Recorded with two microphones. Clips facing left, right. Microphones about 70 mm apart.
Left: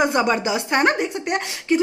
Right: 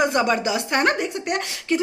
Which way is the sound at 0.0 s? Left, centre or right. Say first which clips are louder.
Left 1 dB; centre.